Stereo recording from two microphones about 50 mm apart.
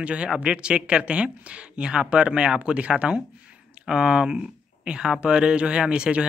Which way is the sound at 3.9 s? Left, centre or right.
Centre.